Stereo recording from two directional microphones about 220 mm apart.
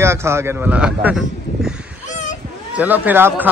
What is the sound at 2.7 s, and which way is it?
Speech, 5° right (ahead or behind).